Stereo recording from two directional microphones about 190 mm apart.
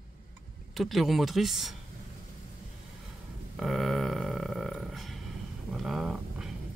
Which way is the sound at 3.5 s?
Centre (ahead or behind).